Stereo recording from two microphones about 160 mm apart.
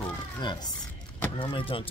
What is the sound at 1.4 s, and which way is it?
Speech, 35° left (ahead or behind).